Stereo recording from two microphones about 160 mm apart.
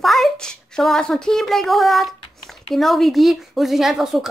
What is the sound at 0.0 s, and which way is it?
A woman's voice, centre (ahead or behind).